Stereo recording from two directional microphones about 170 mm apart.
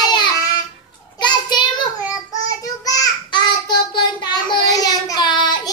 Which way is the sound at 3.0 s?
25° left (ahead or behind).